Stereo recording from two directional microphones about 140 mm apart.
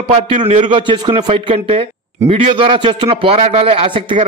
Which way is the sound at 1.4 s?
45° right (ahead or behind).